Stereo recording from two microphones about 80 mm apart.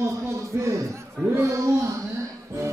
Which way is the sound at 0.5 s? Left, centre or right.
Right.